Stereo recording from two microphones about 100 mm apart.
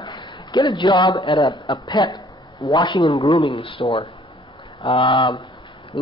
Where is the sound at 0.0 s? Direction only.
50° left (ahead or behind).